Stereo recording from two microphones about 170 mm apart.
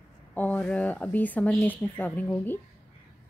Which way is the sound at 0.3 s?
10° left (ahead or behind).